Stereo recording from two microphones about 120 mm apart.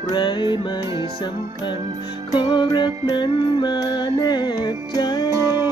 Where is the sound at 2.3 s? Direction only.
35° left (ahead or behind).